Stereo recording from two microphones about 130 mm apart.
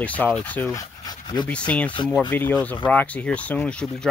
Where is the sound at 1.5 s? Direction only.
10° left (ahead or behind).